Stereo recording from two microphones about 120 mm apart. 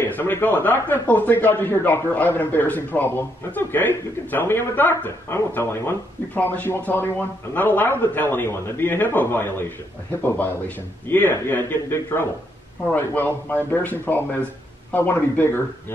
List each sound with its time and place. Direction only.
0.0 s a man's voice: 15° left (ahead or behind)